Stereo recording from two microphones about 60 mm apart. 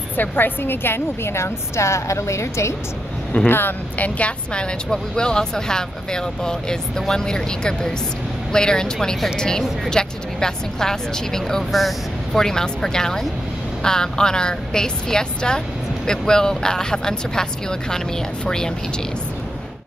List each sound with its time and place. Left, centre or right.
0.2 s a woman's voice: left
3.4 s speech: left
4.9 s speech: centre